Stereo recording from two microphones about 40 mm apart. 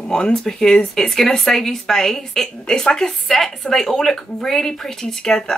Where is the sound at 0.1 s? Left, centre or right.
Centre.